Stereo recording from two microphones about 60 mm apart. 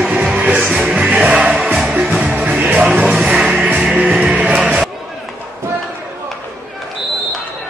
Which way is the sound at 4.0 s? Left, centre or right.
Right.